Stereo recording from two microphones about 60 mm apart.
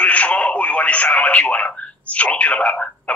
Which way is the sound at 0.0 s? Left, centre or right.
Left.